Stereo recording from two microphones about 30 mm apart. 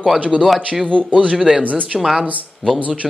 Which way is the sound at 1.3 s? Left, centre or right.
Centre.